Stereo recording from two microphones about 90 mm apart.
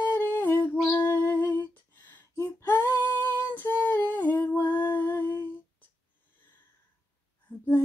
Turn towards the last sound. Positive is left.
turn(degrees=20)  # may be behind; listen again after turning